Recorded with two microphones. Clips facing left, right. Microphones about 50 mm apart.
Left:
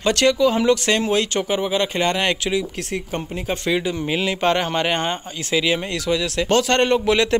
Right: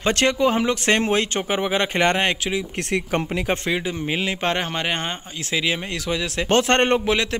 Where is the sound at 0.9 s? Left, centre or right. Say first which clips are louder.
Even; right.